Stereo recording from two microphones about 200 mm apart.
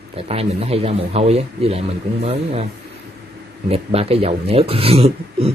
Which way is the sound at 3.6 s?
30° right (ahead or behind).